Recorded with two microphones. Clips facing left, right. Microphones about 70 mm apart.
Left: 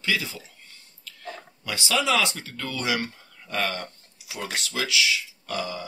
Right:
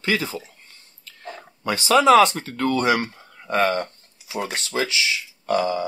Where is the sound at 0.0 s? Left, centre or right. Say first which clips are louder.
Right 4 dB; right.